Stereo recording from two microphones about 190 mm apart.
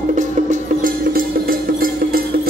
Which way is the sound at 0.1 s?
40° right (ahead or behind).